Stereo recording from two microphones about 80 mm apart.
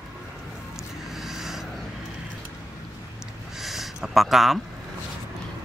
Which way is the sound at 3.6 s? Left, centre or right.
Centre.